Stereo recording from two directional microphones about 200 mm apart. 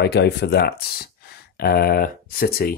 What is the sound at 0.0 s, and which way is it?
Speech, 55° left (ahead or behind).